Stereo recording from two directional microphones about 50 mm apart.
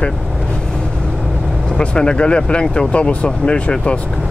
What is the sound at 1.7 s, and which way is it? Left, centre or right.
Speech, centre.